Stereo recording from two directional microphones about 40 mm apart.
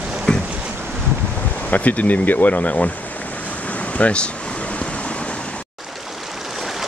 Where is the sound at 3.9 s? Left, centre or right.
Left.